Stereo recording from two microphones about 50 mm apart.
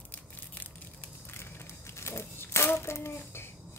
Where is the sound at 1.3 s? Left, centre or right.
Left.